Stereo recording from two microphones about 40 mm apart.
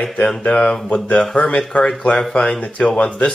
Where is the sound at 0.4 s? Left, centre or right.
Left.